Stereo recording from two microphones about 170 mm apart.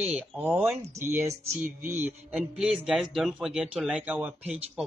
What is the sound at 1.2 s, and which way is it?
Speech, 50° right (ahead or behind).